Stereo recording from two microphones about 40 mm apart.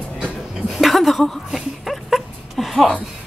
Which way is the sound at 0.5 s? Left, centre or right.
Centre.